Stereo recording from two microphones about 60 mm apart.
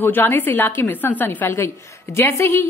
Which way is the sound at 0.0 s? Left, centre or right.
Left.